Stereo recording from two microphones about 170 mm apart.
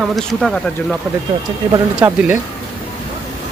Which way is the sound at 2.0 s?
10° right (ahead or behind).